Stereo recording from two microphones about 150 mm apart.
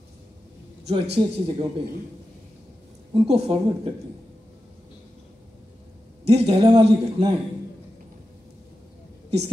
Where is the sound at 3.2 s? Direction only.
40° right (ahead or behind).